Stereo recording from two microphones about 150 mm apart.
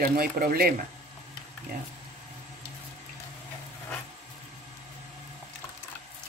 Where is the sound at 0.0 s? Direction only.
80° right.